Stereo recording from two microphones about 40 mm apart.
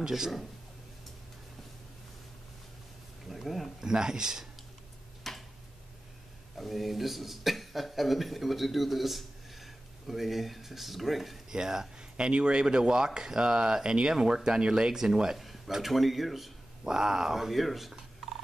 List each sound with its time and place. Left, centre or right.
0.0 s speech: centre
3.3 s a sound: centre
3.8 s speech: centre
5.2 s tick-tock: centre
6.6 s a man's voice: centre
11.5 s speech: centre
15.3 s a sound: centre
15.9 s speech: centre
16.8 s speech: centre